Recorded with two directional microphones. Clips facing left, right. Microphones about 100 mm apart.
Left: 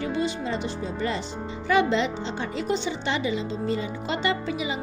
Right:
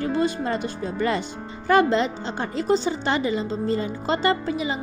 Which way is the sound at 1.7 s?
45° right (ahead or behind).